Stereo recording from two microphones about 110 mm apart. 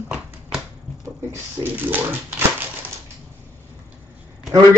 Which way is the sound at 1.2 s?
20° right (ahead or behind).